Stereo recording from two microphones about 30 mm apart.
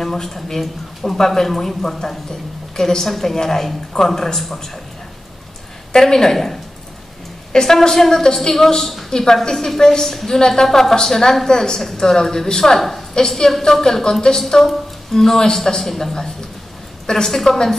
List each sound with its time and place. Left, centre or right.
0.0 s a woman's voice: centre
5.9 s a woman's voice: centre
6.3 s a woman's voice: centre
7.5 s a woman's voice: centre
17.3 s a woman's voice: centre